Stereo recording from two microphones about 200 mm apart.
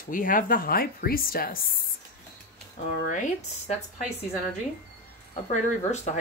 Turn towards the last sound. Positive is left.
turn(degrees=35)  # may be behind; listen again after turning